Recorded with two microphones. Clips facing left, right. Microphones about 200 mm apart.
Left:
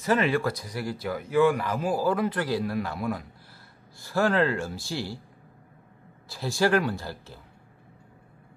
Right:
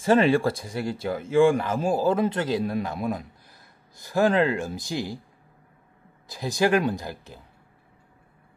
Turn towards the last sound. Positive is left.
turn(degrees=-15)  # may be behind; listen again after turning